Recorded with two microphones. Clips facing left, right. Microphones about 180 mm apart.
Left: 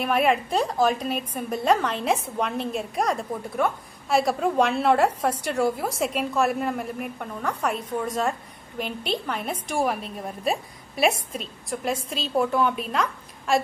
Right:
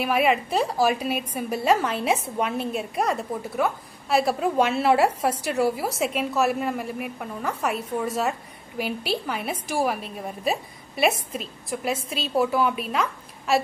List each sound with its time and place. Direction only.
0.0 s a woman's voice: centre (ahead or behind)